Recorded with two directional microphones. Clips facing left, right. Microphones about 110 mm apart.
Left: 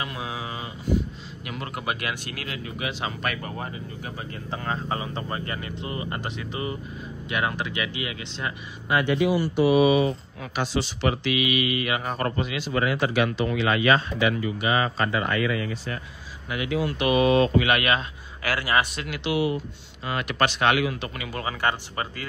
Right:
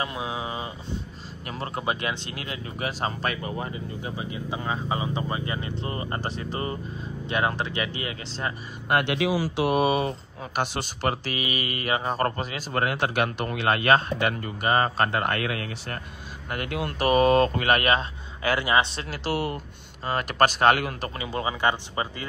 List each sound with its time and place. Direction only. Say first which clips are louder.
0.0 s speech: right 2 dB; 25° right (ahead or behind)
2.8 s speech: right 2 dB; 40° right (ahead or behind)
3.7 s speech: right 2 dB; 20° right (ahead or behind)
5.8 s speech: right 1 dB; 35° right (ahead or behind)
8.8 s speech: left 1 dB; 55° right (ahead or behind)
21.2 s speech: right 3 dB; 25° right (ahead or behind)